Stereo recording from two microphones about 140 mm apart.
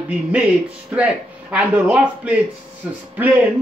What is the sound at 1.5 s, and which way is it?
Speech, 10° right (ahead or behind).